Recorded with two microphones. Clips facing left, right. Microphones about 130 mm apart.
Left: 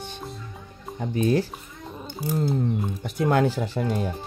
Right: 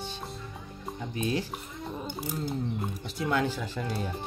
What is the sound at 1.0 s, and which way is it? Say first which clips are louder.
Speech: left 8 dB; 45° left (ahead or behind).